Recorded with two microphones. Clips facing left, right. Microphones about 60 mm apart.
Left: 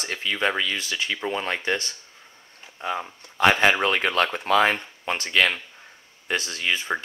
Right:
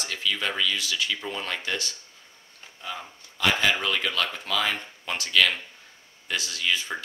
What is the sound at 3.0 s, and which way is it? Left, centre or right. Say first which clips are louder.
Speech: left 6 dB; left.